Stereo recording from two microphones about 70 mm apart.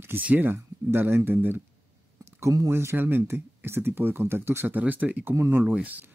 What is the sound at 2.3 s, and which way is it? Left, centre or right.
Speech, right.